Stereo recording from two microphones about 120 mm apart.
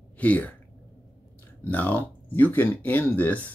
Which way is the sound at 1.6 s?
15° left (ahead or behind).